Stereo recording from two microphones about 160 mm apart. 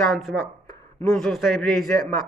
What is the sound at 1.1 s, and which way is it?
Speech, centre (ahead or behind).